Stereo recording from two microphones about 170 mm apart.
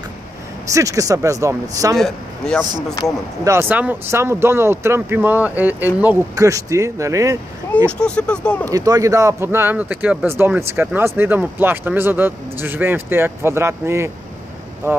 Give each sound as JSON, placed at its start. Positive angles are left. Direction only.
{"t": 0.7, "sound": "speech", "side_deg": -20}
{"t": 2.0, "sound": "speech", "side_deg": 5}
{"t": 3.4, "sound": "speech", "side_deg": -15}
{"t": 8.0, "sound": "speech", "side_deg": 5}
{"t": 8.6, "sound": "speech", "side_deg": -20}